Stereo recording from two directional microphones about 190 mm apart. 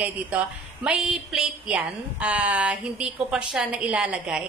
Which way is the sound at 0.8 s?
5° right (ahead or behind).